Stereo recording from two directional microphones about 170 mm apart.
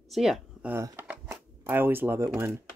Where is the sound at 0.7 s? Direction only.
10° right (ahead or behind).